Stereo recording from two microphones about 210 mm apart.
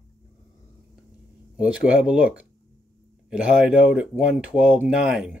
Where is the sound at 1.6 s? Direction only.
5° right (ahead or behind).